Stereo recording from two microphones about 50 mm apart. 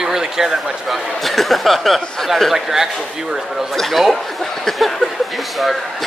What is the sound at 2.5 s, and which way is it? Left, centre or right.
Speech, centre.